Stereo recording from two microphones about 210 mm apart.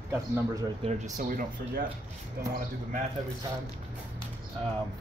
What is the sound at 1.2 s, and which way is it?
Speech, 45° right (ahead or behind).